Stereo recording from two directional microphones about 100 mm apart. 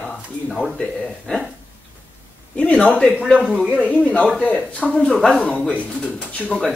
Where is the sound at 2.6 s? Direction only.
15° left (ahead or behind).